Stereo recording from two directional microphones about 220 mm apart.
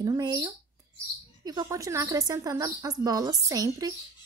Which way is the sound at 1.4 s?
20° right (ahead or behind).